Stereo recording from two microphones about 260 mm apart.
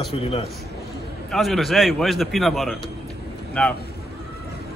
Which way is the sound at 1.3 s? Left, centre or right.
Centre.